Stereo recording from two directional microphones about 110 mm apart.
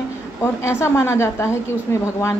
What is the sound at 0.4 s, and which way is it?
A woman's voice, 25° left (ahead or behind).